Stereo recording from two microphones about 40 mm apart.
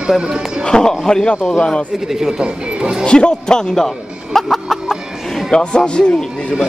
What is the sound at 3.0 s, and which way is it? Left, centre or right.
Speech, left.